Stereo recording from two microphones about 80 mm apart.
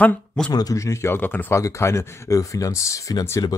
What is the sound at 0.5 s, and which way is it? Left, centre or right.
Speech, left.